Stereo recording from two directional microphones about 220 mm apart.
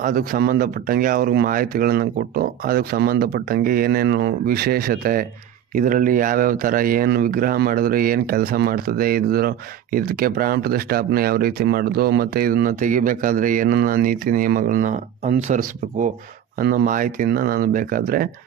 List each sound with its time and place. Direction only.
0.0 s speech: 40° right (ahead or behind)